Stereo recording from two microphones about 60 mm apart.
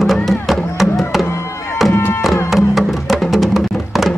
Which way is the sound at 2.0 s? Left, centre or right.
Left.